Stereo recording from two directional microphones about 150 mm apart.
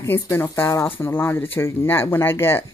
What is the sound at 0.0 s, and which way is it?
Speech, 15° left (ahead or behind).